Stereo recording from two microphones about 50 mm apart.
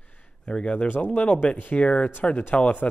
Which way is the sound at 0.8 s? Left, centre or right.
Left.